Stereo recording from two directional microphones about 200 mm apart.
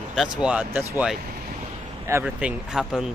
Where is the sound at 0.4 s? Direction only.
5° right (ahead or behind).